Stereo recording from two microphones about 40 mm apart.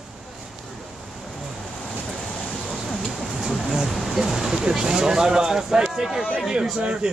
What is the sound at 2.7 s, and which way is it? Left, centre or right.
Speech, centre.